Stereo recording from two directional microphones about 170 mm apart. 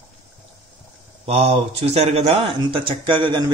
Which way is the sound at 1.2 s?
35° right (ahead or behind).